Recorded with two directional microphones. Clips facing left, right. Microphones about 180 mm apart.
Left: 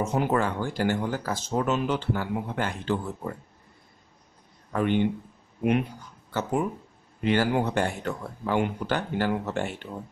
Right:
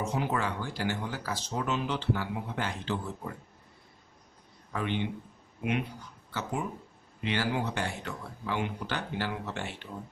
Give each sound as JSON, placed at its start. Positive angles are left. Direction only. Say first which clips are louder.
{"t": 0.0, "sound": "speech", "louder": "left 6 dB", "side_deg": 50}
{"t": 4.7, "sound": "speech", "louder": "left 8 dB", "side_deg": 50}
{"t": 7.2, "sound": "speech", "louder": "left 7 dB", "side_deg": 50}